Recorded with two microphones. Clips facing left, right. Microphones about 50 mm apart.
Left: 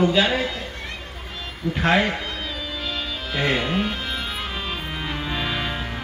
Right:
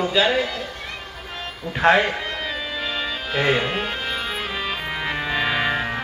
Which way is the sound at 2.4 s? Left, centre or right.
Centre.